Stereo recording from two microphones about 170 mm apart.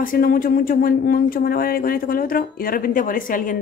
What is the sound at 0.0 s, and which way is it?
Speech, 60° left (ahead or behind).